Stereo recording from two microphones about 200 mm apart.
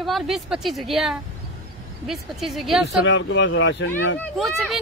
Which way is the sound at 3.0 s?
65° left (ahead or behind).